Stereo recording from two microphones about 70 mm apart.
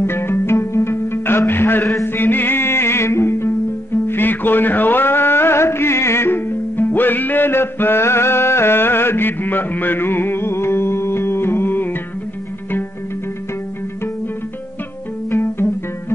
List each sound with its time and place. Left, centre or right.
0.0 s music: left
1.5 s a man's voice: left
2.1 s music: left
15.3 s music: left